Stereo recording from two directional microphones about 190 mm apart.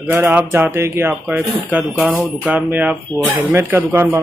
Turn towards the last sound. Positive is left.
turn(degrees=-10)  # may be behind; listen again after turning